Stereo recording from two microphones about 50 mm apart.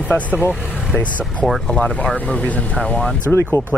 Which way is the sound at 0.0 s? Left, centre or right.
Left.